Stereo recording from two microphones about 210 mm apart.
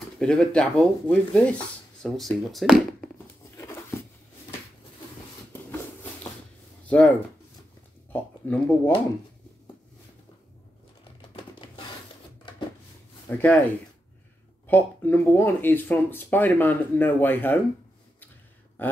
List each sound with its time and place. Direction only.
0.2 s speech: 5° left (ahead or behind)
3.5 s a sound: 15° left (ahead or behind)
6.9 s speech: 5° left (ahead or behind)
11.1 s typewriter: 25° left (ahead or behind)
13.3 s speech: 5° left (ahead or behind)
14.7 s speech: 10° left (ahead or behind)
18.8 s a sound: 10° left (ahead or behind)